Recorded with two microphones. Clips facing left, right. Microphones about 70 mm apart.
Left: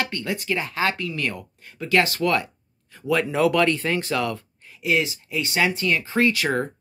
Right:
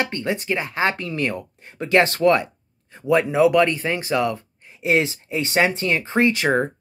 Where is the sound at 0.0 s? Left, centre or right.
Right.